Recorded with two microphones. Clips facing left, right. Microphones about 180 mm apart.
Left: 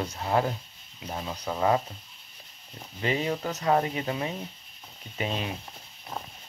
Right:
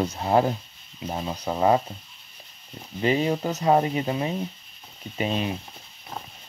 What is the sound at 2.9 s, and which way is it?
Speech, 30° right (ahead or behind).